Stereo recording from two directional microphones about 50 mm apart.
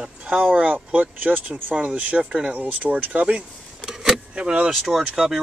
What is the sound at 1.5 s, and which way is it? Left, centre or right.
Speech, right.